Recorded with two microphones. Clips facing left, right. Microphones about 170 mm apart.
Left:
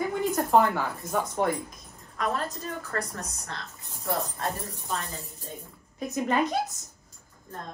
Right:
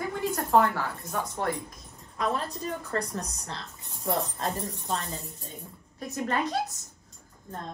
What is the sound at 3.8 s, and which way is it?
Speech, centre (ahead or behind).